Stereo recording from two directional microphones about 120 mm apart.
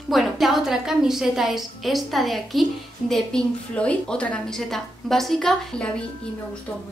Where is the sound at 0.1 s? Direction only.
Centre (ahead or behind).